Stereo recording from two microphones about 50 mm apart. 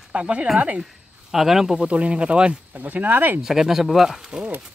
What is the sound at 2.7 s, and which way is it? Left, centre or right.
Speech, right.